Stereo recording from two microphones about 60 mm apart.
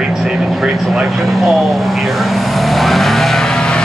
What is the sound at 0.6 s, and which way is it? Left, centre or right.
Speech, centre.